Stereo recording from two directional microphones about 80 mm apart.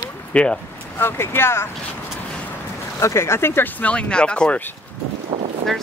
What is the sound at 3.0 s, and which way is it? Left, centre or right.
Speech, left.